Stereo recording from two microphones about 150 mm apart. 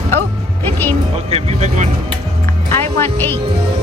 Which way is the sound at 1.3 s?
45° right (ahead or behind).